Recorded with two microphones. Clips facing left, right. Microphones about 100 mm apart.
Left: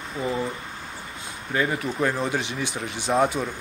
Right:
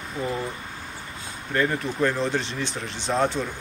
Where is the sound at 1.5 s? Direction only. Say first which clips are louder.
Right 1 dB; 10° left (ahead or behind).